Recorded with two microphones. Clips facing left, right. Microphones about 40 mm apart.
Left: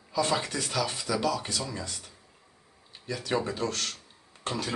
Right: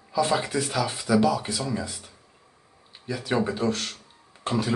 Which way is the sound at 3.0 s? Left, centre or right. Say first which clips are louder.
Right 4 dB; centre.